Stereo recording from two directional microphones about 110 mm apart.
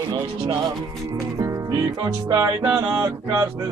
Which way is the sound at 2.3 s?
25° right (ahead or behind).